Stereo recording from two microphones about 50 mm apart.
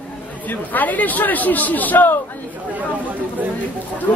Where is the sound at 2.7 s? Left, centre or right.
Right.